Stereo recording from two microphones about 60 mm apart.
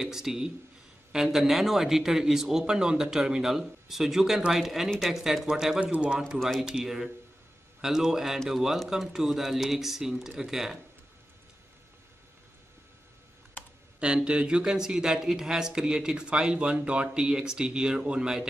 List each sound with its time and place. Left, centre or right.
0.0 s speech: centre
5.8 s speech: centre
6.1 s speech: centre
13.9 s speech: centre